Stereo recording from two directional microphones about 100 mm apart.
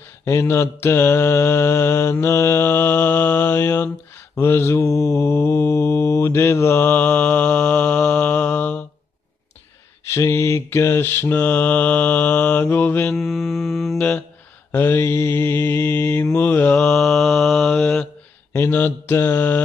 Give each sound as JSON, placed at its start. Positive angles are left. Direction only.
{"t": 0.2, "sound": "mantra", "side_deg": 30}
{"t": 3.5, "sound": "mantra", "side_deg": 30}
{"t": 10.1, "sound": "mantra", "side_deg": 30}
{"t": 13.1, "sound": "mantra", "side_deg": 5}
{"t": 14.7, "sound": "mantra", "side_deg": 20}
{"t": 18.5, "sound": "mantra", "side_deg": 25}